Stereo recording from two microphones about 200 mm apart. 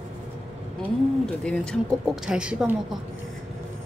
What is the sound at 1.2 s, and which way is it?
A woman's voice, 5° left (ahead or behind).